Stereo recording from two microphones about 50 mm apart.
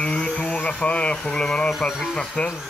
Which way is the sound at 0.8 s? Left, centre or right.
Left.